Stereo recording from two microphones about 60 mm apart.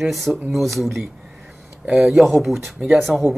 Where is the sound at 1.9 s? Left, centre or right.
Centre.